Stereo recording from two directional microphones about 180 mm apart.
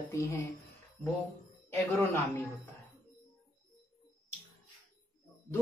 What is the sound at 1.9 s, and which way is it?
Speech, 15° left (ahead or behind).